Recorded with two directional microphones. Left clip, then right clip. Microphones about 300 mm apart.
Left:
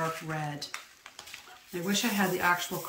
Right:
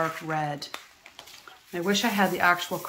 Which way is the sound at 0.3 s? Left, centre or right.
Centre.